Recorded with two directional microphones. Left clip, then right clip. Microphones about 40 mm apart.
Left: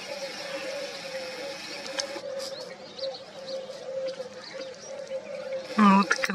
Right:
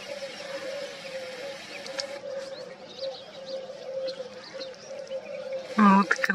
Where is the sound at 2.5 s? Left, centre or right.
Right.